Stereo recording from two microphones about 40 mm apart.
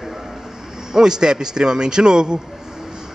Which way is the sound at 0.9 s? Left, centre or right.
Centre.